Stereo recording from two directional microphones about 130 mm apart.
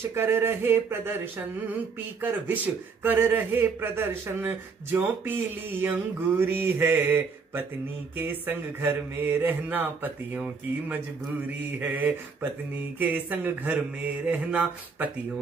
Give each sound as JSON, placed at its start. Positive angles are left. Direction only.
{"t": 0.1, "sound": "a man's voice", "side_deg": -15}
{"t": 2.4, "sound": "a man's voice", "side_deg": -15}